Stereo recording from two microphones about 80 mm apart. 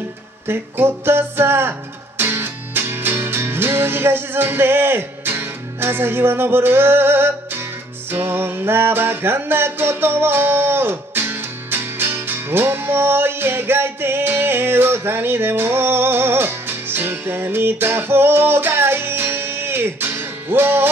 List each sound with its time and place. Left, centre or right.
0.5 s music: right